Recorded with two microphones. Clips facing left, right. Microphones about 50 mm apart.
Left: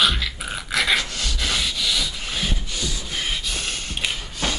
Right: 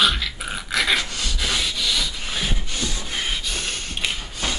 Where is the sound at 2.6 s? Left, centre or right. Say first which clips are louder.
Right 1 dB; right.